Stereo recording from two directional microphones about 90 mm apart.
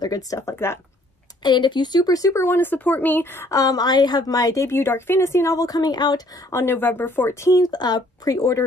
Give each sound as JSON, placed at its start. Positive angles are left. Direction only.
{"t": 0.0, "sound": "speech", "side_deg": 40}
{"t": 1.4, "sound": "speech", "side_deg": 55}
{"t": 3.5, "sound": "a woman's voice", "side_deg": 45}
{"t": 6.5, "sound": "speech", "side_deg": 25}